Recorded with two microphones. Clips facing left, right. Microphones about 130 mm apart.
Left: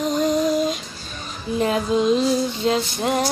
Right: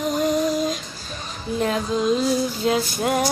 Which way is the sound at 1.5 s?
5° left (ahead or behind).